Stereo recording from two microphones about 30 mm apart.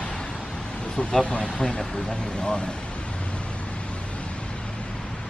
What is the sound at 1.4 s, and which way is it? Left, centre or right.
Speech, left.